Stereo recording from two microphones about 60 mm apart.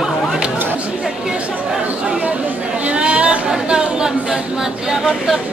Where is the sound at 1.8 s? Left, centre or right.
Right; by 5.4 s centre.